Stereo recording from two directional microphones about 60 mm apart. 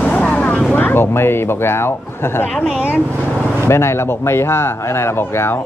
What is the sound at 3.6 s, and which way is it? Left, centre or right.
Speech, left.